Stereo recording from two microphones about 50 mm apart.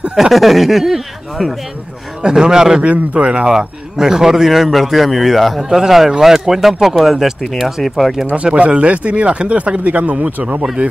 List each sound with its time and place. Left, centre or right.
0.1 s speech: centre
2.2 s a man's voice: centre
2.9 s a man's voice: right; by 5.6 s centre
5.6 s a man's voice: centre
8.5 s speech: right